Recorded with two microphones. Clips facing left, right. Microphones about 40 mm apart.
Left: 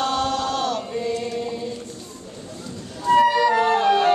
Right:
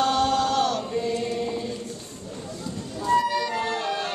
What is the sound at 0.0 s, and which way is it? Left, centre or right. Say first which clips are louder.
Chant: right 1 dB; centre.